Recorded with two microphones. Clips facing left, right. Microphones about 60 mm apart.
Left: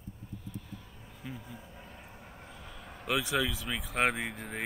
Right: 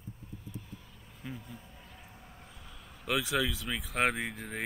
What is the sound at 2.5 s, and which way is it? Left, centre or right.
Vehicle, centre.